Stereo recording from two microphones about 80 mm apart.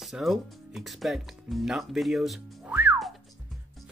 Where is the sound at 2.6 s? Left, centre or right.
Right.